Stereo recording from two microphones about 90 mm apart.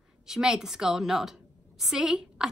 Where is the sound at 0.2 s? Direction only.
5° right (ahead or behind).